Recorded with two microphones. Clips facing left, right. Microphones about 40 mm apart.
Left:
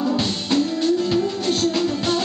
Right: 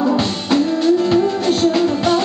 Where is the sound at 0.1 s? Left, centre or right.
Centre.